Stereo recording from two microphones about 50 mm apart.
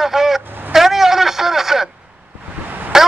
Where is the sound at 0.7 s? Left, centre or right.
Centre.